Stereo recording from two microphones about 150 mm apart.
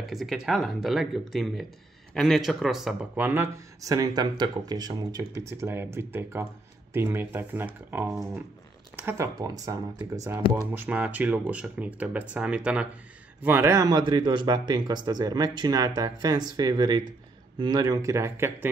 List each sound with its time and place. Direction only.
0.0 s speech: centre (ahead or behind); by 18.7 s 15° right (ahead or behind)